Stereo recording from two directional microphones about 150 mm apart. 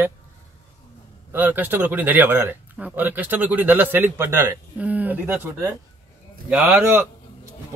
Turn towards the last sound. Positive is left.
turn(degrees=-15)  # may be behind; listen again after turning